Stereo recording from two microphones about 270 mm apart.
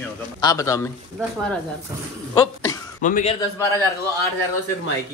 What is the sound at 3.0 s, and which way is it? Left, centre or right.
Speech, left.